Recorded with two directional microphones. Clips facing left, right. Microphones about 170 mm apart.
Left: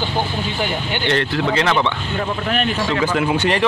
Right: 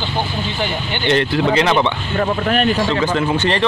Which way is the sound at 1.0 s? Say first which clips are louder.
Right 4 dB; 20° right (ahead or behind).